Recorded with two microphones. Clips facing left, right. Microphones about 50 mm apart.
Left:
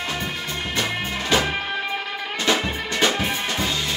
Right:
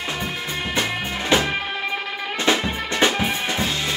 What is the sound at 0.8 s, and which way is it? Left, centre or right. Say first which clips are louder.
Music: even; centre.